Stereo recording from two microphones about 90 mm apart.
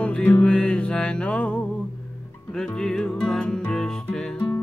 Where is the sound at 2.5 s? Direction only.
10° left (ahead or behind).